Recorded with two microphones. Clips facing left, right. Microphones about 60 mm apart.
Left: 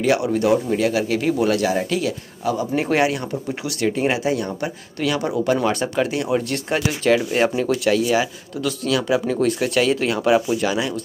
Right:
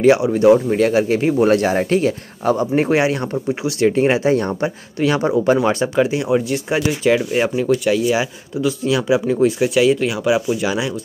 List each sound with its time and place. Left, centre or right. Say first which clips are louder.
0.0 s speech: right 6 dB; right
4.6 s speech: right 5 dB; right